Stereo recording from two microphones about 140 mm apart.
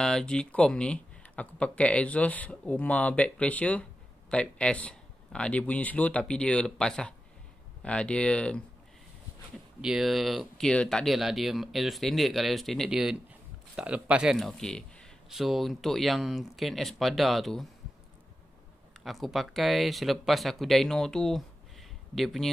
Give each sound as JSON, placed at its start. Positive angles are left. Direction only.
{"t": 0.0, "sound": "speech", "side_deg": 5}
{"t": 9.8, "sound": "speech", "side_deg": -5}
{"t": 19.0, "sound": "speech", "side_deg": 0}